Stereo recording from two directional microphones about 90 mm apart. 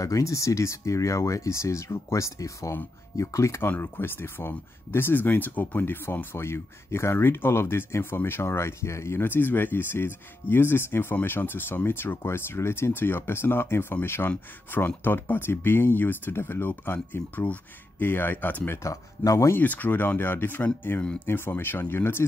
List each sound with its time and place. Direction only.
0.0 s speech: 35° left (ahead or behind); by 18.8 s 20° left (ahead or behind)
18.8 s speech: 35° left (ahead or behind)
19.6 s speech: 20° left (ahead or behind)